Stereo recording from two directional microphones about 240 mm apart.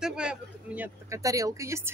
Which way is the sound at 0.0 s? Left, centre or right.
Centre.